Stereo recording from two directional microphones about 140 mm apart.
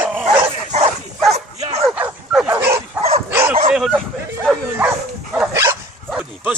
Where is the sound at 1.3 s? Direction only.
50° right (ahead or behind).